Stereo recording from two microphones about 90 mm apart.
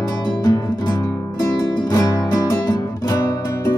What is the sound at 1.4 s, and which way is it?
Music, 45° left (ahead or behind).